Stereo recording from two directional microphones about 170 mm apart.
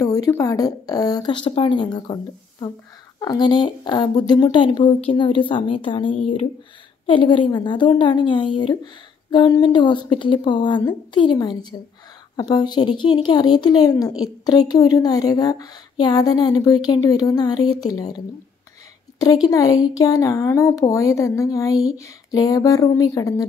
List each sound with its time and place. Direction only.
0.0 s a woman's voice: 20° left (ahead or behind)
3.2 s a woman's voice: 25° left (ahead or behind)